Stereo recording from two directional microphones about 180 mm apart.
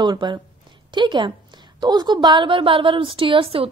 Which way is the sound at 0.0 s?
25° right (ahead or behind).